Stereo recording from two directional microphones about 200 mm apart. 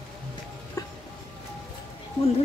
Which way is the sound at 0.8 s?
15° left (ahead or behind).